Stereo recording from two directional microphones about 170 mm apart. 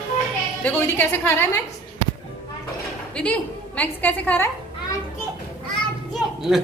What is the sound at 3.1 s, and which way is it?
A woman's voice, 10° left (ahead or behind).